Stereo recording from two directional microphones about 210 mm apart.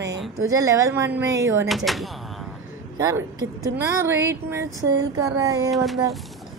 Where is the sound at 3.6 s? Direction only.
15° right (ahead or behind).